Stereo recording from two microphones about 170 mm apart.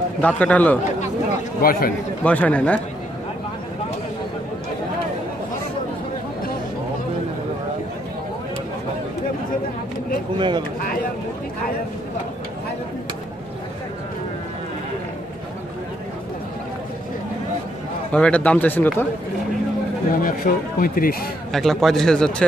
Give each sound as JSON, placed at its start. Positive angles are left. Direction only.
{"t": 0.2, "sound": "speech", "side_deg": 10}
{"t": 1.6, "sound": "a man's voice", "side_deg": 60}
{"t": 2.2, "sound": "speech", "side_deg": 10}
{"t": 10.3, "sound": "a sound", "side_deg": -30}
{"t": 18.1, "sound": "speech", "side_deg": 5}
{"t": 20.1, "sound": "a man's voice", "side_deg": 55}
{"t": 21.5, "sound": "a man's voice", "side_deg": 0}